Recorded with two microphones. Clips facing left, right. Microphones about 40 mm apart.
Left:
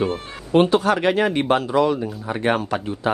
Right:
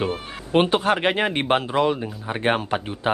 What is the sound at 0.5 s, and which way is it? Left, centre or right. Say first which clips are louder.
Speech: left 2 dB; right.